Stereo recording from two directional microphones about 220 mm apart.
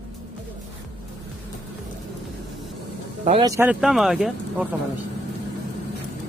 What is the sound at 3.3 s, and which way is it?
Speech, 20° right (ahead or behind).